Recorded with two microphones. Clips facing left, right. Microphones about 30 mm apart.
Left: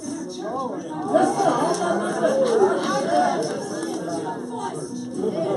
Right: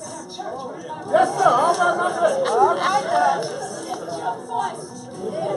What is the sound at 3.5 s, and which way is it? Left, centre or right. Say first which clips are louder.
Chatter: left 2 dB; centre.